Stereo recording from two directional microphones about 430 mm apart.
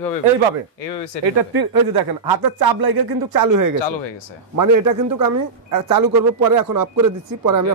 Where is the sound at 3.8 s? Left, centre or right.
Left.